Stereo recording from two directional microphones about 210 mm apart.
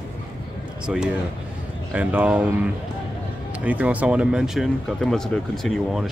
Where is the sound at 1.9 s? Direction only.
5° right (ahead or behind).